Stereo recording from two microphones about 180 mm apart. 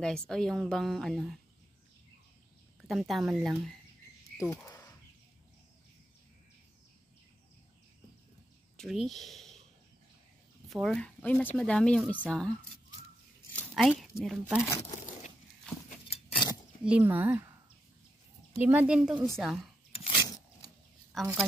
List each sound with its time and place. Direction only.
0.0 s a woman's voice: 5° left (ahead or behind)
2.9 s a woman's voice: centre (ahead or behind)
4.4 s a sound: 15° left (ahead or behind)
8.7 s speech: centre (ahead or behind)
10.7 s a woman's voice: centre (ahead or behind)
13.5 s a sound: 5° left (ahead or behind)
14.1 s speech: 15° left (ahead or behind)
16.4 s a sound: 25° left (ahead or behind)
16.8 s speech: 10° right (ahead or behind)
18.7 s a woman's voice: 5° right (ahead or behind)
20.0 s a sound: 25° left (ahead or behind)
21.1 s a woman's voice: 5° right (ahead or behind)